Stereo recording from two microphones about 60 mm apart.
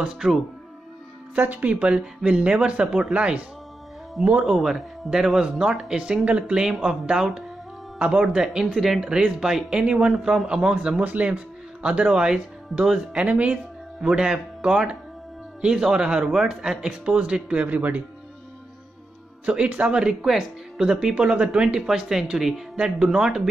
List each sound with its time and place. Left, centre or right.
1.3 s speech: right
4.6 s speech: centre; by 18.0 s right
19.4 s speech: right